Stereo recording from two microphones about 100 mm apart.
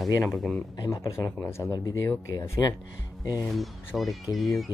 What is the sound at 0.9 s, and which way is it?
Speech, 30° left (ahead or behind).